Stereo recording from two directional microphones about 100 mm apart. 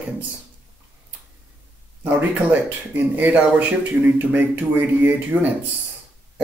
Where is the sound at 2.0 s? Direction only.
15° right (ahead or behind).